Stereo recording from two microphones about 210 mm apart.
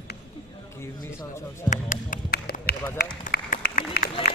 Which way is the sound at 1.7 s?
40° left (ahead or behind).